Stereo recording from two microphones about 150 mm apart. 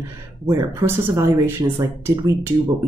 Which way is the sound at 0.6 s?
15° right (ahead or behind).